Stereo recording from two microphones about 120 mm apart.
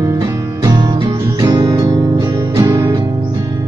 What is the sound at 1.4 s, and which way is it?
Music, 35° right (ahead or behind).